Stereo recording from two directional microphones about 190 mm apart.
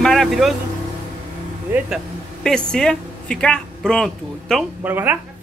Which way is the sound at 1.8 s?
Centre (ahead or behind).